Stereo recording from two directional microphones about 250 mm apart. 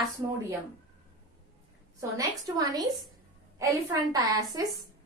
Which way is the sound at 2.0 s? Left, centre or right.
Centre.